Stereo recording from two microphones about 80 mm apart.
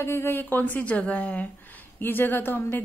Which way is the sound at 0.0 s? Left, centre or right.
Left.